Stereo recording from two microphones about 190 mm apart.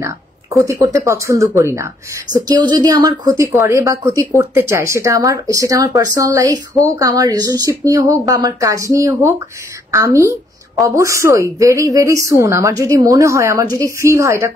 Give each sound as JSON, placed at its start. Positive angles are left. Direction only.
{"t": 0.0, "sound": "speech", "side_deg": -15}